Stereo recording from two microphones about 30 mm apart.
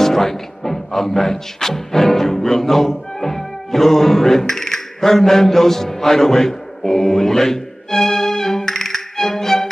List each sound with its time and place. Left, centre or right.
0.0 s speech: centre